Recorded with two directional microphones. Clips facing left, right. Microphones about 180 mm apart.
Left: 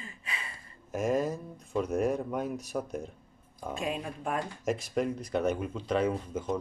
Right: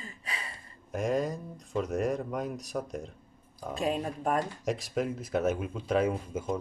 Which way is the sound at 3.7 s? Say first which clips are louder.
Right 4 dB; 40° right (ahead or behind).